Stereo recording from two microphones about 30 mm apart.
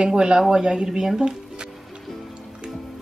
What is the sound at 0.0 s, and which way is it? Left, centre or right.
Speech, right.